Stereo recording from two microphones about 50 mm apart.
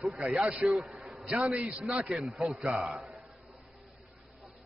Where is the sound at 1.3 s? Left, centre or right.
Right; by 3.0 s centre.